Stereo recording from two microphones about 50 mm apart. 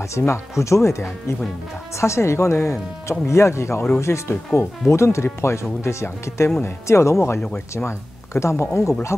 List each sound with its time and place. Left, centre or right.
0.3 s speech: left
7.7 s speech: left